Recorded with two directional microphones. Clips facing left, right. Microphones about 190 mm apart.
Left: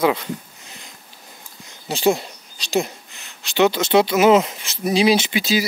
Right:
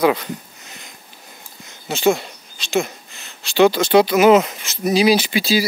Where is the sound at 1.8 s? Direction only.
35° left (ahead or behind).